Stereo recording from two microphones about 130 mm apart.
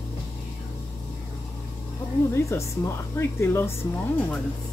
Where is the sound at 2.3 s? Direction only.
20° left (ahead or behind).